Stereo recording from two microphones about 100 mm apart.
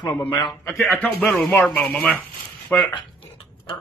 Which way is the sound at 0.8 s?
15° left (ahead or behind).